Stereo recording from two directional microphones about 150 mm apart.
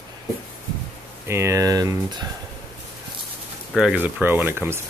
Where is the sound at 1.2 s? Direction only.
15° right (ahead or behind).